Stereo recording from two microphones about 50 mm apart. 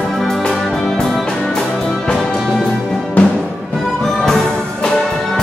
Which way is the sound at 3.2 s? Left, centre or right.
Left.